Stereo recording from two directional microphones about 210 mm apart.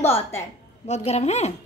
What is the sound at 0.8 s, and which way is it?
Speech, 30° left (ahead or behind).